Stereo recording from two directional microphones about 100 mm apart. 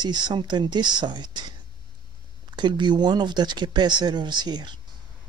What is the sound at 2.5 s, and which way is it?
Speech, 50° right (ahead or behind).